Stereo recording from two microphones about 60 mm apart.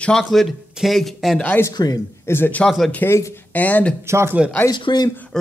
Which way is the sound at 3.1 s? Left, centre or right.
Left.